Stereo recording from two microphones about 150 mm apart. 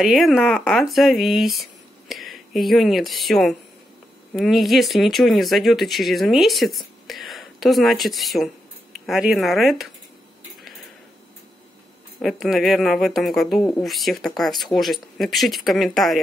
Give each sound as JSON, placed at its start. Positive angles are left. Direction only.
{"t": 0.0, "sound": "speech", "side_deg": 0}
{"t": 12.2, "sound": "speech", "side_deg": 0}